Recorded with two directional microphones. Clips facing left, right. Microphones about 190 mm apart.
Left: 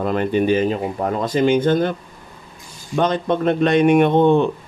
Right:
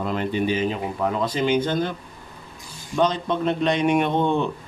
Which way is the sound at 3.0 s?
55° left (ahead or behind).